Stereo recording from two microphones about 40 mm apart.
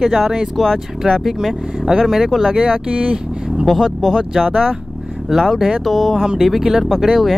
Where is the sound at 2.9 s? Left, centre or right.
Right.